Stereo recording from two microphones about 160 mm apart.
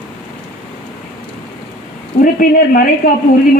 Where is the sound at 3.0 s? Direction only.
60° left (ahead or behind).